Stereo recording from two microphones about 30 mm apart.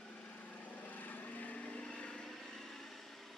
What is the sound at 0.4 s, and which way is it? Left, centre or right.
Vehicle, left.